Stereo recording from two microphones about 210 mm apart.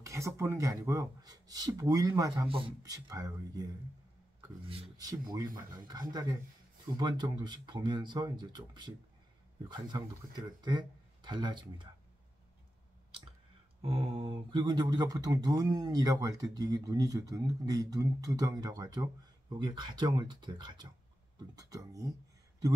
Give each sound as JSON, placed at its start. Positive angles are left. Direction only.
{"t": 0.0, "sound": "mantra", "side_deg": -15}
{"t": 7.0, "sound": "speech", "side_deg": -20}
{"t": 13.8, "sound": "mantra", "side_deg": -25}
{"t": 19.5, "sound": "speech", "side_deg": -20}
{"t": 21.4, "sound": "mantra", "side_deg": -15}